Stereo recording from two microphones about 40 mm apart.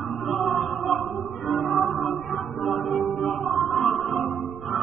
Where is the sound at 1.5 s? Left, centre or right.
Centre.